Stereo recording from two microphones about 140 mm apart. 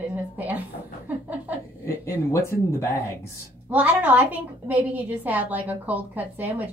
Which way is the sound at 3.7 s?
10° right (ahead or behind).